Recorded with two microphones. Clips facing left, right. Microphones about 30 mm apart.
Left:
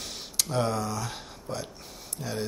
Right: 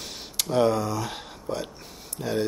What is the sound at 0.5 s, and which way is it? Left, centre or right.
Speech, centre.